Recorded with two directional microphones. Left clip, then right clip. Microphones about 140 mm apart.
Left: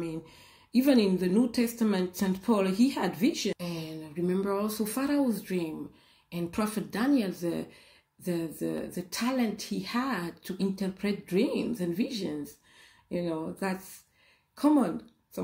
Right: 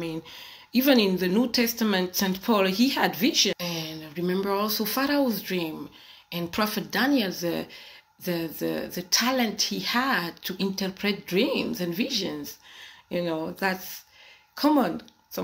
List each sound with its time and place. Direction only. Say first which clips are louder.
0.0 s speech: right 4 dB; 25° left (ahead or behind)